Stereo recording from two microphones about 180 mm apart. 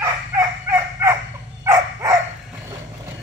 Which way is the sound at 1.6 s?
15° right (ahead or behind).